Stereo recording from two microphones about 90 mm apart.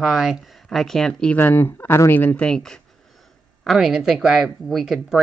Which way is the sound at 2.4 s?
5° left (ahead or behind).